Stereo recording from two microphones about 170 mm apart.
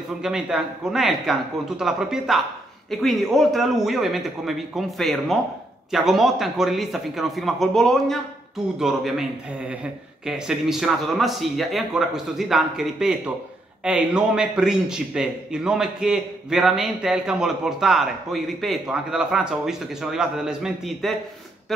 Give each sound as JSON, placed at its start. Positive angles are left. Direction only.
{"t": 0.2, "sound": "a man's voice", "side_deg": -5}
{"t": 10.2, "sound": "a man's voice", "side_deg": -5}